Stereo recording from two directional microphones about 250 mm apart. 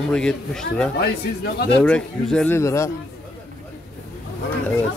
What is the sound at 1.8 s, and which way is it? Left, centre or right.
Speech, centre.